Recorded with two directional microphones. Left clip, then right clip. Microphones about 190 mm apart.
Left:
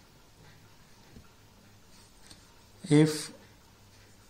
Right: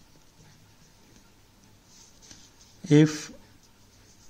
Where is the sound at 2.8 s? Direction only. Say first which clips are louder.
Right 3 dB; 40° right (ahead or behind).